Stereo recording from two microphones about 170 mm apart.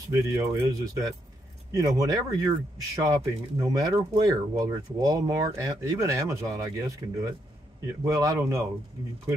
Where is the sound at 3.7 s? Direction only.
20° right (ahead or behind).